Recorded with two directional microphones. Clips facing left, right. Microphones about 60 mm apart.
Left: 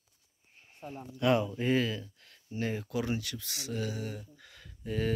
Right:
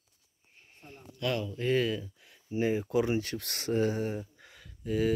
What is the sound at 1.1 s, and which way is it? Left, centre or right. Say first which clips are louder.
Speech: left 5 dB; left.